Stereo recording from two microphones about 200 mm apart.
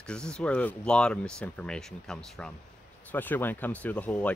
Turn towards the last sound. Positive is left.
turn(degrees=5)  # may be behind; listen again after turning